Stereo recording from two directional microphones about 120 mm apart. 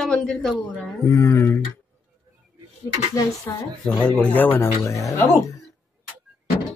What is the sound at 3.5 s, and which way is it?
Speech, 30° left (ahead or behind).